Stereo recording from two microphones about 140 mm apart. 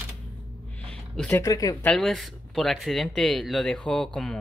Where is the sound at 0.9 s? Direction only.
10° left (ahead or behind).